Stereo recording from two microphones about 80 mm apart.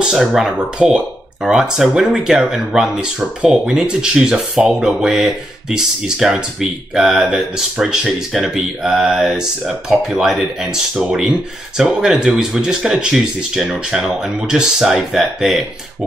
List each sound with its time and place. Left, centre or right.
0.0 s speech: centre